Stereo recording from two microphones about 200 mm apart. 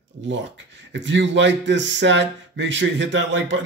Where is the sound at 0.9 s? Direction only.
65° right (ahead or behind).